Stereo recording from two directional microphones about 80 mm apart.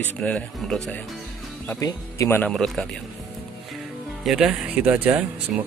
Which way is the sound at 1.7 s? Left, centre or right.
Left.